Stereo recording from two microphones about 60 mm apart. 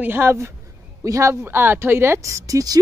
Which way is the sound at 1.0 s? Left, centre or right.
Right.